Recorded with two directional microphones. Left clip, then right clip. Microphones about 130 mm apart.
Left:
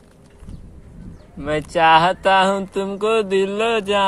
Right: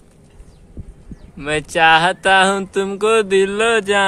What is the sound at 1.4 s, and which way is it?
Speech, 45° right (ahead or behind).